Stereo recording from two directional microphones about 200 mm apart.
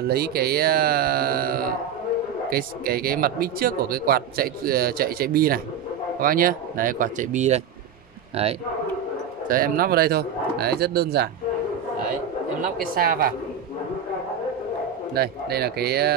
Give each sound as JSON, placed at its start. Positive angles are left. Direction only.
{"t": 0.1, "sound": "a man's voice", "side_deg": -50}
{"t": 9.5, "sound": "a man's voice", "side_deg": -45}
{"t": 12.9, "sound": "a man's voice", "side_deg": -45}
{"t": 15.1, "sound": "a man's voice", "side_deg": -50}